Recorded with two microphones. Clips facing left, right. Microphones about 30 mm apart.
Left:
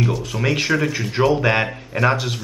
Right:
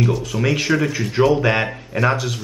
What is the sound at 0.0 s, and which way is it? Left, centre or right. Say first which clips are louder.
Speech: right 2 dB; centre.